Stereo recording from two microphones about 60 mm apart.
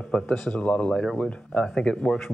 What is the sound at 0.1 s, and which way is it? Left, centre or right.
Speech, left.